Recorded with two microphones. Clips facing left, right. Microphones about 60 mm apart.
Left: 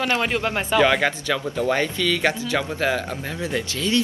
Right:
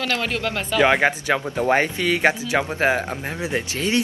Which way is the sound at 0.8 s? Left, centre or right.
Right.